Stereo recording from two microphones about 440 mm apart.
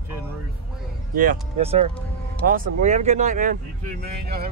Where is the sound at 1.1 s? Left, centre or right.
Centre.